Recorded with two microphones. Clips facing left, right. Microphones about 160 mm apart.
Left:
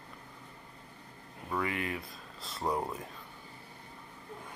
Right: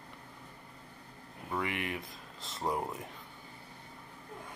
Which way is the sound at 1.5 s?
20° right (ahead or behind).